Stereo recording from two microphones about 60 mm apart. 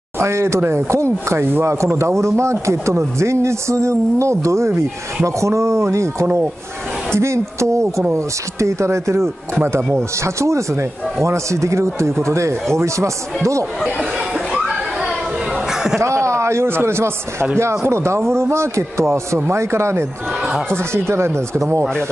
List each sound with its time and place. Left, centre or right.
0.2 s speech: right
14.1 s a sound: centre
15.7 s music: centre
16.0 s a man's voice: right